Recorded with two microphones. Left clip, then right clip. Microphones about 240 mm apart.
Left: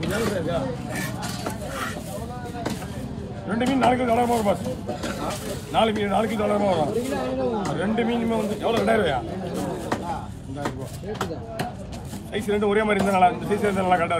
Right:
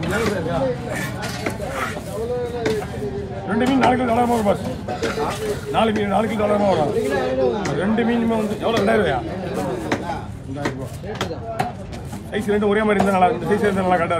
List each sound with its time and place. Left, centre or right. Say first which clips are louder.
3.4 s speech: right 3 dB; right
5.7 s a man's voice: right 2 dB; right
12.4 s a man's voice: right 3 dB; right